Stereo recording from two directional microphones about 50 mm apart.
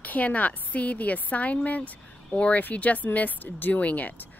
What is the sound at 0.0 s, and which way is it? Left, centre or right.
Speech, left.